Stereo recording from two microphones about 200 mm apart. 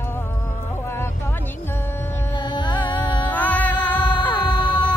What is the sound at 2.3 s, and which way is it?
Music, 20° left (ahead or behind).